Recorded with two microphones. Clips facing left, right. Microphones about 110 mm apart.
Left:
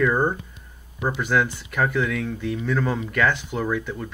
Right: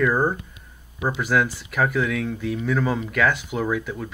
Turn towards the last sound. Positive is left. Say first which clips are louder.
# right 1 dB
turn(degrees=-5)  # may be behind; listen again after turning